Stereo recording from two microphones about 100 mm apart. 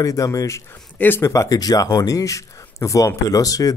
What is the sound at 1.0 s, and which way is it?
Speech, 20° left (ahead or behind).